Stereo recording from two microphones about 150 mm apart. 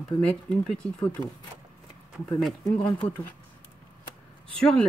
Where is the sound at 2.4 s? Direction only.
Centre (ahead or behind).